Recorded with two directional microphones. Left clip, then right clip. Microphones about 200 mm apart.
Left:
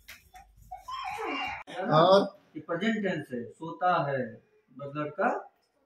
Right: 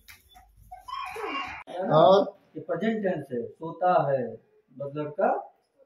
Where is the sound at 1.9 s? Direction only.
20° right (ahead or behind).